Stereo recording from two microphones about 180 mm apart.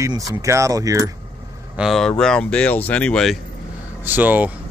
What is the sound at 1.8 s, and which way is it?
Speech, centre (ahead or behind).